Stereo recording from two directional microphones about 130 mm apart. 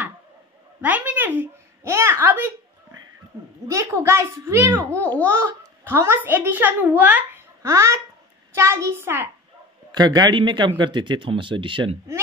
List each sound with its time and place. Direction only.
0.7 s a sound: 10° right (ahead or behind)
3.6 s a child's voice: 25° right (ahead or behind)
9.9 s speech: 30° right (ahead or behind)